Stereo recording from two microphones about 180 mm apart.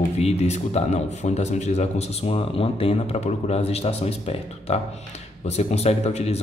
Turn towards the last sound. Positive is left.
turn(degrees=35)  # may be behind; listen again after turning